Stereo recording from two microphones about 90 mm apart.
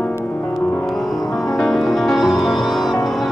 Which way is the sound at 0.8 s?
Centre (ahead or behind).